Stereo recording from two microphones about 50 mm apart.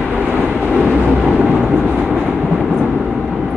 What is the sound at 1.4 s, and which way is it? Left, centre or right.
Vehicle, right.